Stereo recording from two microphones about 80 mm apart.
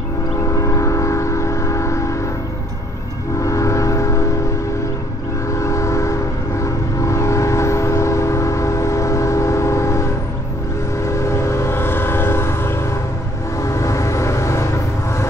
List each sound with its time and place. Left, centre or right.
0.4 s train: left
3.3 s train: left
5.5 s train: left